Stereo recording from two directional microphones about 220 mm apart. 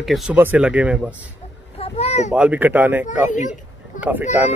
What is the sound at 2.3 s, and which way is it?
Speech, 5° right (ahead or behind).